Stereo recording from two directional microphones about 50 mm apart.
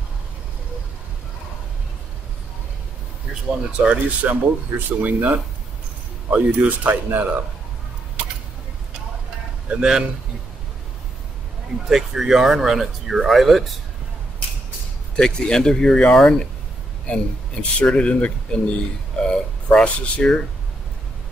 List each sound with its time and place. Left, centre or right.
3.7 s speech: right
9.7 s a man's voice: centre
11.9 s speech: centre
15.1 s speech: centre
19.2 s a sound: centre
20.2 s speech: left